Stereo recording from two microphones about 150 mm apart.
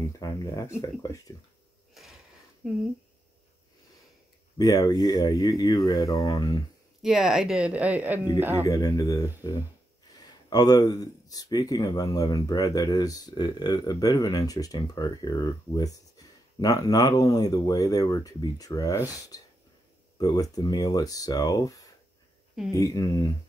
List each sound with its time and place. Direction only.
0.0 s speech: 20° left (ahead or behind)
2.6 s speech: centre (ahead or behind)
4.6 s speech: 25° left (ahead or behind)
7.0 s speech: 5° right (ahead or behind)
8.6 s speech: 25° left (ahead or behind)
18.9 s speech: 10° right (ahead or behind)
20.2 s speech: 25° left (ahead or behind)